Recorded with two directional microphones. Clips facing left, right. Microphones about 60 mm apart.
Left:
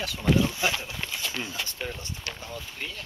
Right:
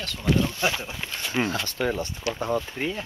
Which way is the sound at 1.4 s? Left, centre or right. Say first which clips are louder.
Right 7 dB; right.